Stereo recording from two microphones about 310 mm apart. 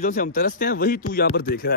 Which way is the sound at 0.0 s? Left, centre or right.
Left.